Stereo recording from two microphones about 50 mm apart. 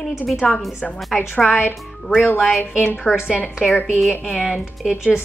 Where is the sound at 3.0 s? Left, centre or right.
Centre.